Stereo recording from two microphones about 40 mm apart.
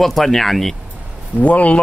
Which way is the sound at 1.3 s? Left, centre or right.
Left.